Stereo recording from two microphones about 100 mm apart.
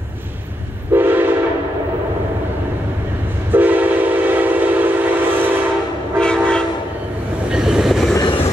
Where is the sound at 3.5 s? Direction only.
15° right (ahead or behind).